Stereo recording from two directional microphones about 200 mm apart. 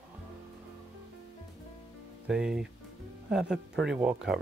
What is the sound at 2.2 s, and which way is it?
Speech, 5° right (ahead or behind).